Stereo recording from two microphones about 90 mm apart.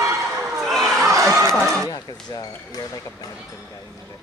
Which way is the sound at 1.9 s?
45° left (ahead or behind).